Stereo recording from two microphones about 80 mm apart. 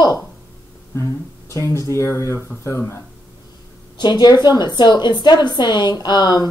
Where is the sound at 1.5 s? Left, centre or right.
Left.